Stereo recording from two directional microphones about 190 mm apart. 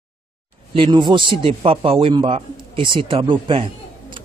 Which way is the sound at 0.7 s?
25° right (ahead or behind).